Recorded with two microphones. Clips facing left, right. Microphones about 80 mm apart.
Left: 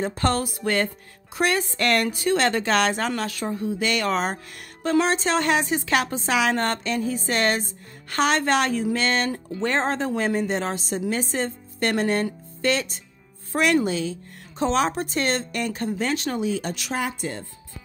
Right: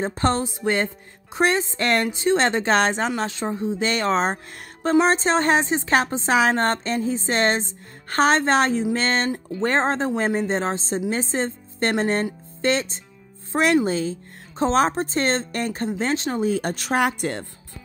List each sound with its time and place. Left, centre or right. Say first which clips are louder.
0.0 s a woman's voice: right 1 dB; right
16.4 s speech: right 3 dB; right
16.9 s speech: right 7 dB; right